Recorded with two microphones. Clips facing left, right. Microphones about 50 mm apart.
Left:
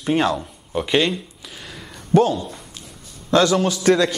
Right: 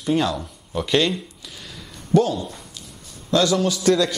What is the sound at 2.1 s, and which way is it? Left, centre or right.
Speech, left.